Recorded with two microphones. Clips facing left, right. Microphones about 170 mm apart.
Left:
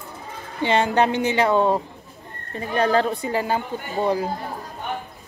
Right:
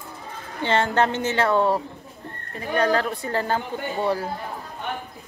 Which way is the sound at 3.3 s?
10° left (ahead or behind).